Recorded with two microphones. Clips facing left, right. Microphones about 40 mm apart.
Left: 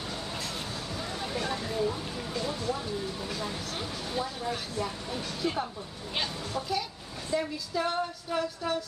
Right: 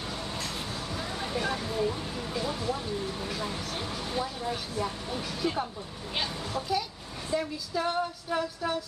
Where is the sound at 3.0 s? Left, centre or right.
Right.